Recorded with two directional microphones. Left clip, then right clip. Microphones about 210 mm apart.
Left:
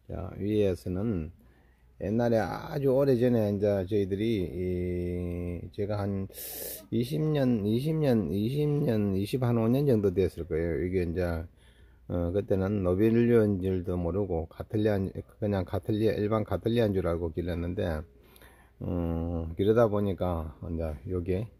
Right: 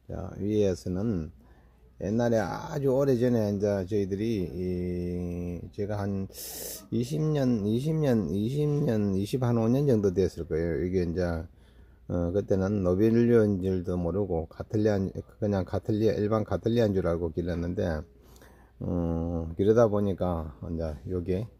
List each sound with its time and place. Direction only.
0.1 s speech: 5° left (ahead or behind)